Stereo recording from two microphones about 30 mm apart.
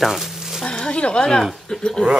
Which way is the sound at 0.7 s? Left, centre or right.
Left.